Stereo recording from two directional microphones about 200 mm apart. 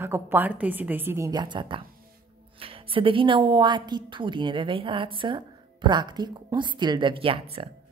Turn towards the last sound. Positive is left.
turn(degrees=-30)  # may be behind; listen again after turning